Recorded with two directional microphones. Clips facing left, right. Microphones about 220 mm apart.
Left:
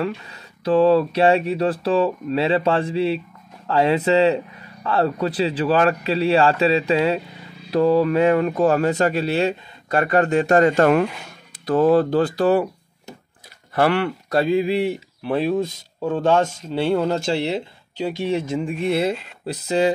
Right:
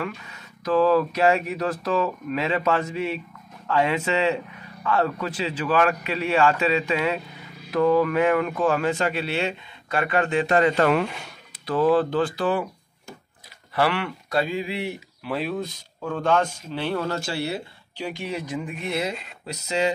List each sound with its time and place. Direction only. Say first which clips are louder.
0.0 s speech: left 6 dB; 35° left (ahead or behind)
13.7 s speech: left 5 dB; 45° left (ahead or behind)
15.2 s speech: left 7 dB; 25° left (ahead or behind)